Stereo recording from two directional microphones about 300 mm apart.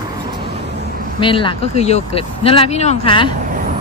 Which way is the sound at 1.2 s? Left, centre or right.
Centre.